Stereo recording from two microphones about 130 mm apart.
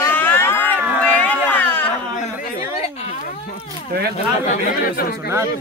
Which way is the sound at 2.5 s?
55° left (ahead or behind).